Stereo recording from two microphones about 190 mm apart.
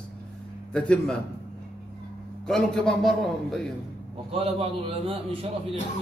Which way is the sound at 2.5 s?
Centre (ahead or behind).